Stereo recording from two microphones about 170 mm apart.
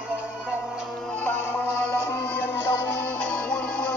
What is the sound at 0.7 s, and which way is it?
Music, 5° left (ahead or behind).